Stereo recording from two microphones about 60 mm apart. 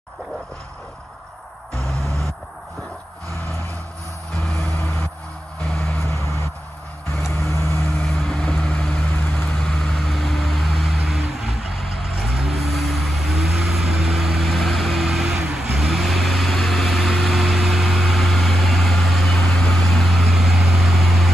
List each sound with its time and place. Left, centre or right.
1.8 s a sound: right
4.6 s vehicle: left
5.9 s vehicle: left
8.1 s vehicle: centre
9.1 s vehicle: left
9.5 s vehicle: centre
9.8 s vehicle: centre